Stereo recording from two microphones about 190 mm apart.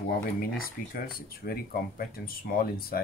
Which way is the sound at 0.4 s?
50° left (ahead or behind).